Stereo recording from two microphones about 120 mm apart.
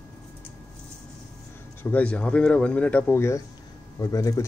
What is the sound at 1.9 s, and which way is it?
Speech, 10° left (ahead or behind).